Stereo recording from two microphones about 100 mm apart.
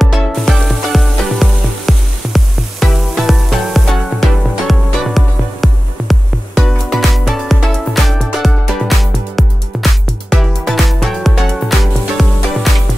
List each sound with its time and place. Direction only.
0.0 s music: centre (ahead or behind)